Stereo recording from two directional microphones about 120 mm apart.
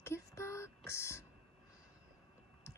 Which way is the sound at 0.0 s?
20° left (ahead or behind).